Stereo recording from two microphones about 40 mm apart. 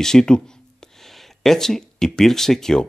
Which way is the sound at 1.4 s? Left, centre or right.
Centre.